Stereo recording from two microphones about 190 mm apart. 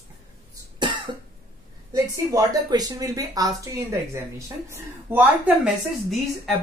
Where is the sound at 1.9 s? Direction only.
15° right (ahead or behind).